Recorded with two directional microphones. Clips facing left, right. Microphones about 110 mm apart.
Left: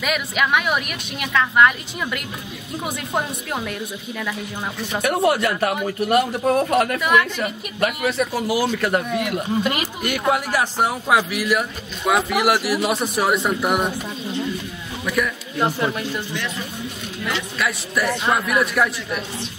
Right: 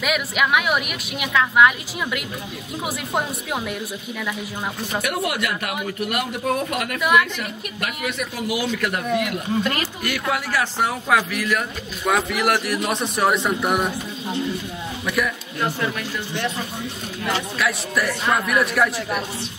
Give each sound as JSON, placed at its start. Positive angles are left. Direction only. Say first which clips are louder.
{"t": 0.0, "sound": "a woman's voice", "louder": "even", "side_deg": 0}
{"t": 5.0, "sound": "a man's voice", "louder": "left 8 dB", "side_deg": 35}
{"t": 7.0, "sound": "a woman's voice", "louder": "even", "side_deg": 0}
{"t": 7.3, "sound": "a man's voice", "louder": "left 5 dB", "side_deg": 35}
{"t": 9.6, "sound": "a woman's voice", "louder": "left 1 dB", "side_deg": 15}
{"t": 15.0, "sound": "a woman's voice", "louder": "left 1 dB", "side_deg": 0}
{"t": 15.6, "sound": "speech", "louder": "left 3 dB", "side_deg": 25}
{"t": 17.6, "sound": "a woman's voice", "louder": "left 2 dB", "side_deg": 0}